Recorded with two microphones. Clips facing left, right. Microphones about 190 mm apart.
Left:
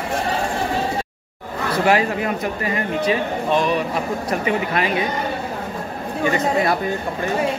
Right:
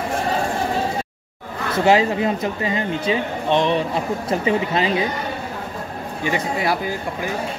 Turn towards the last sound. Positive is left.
turn(degrees=-5)  # may be behind; listen again after turning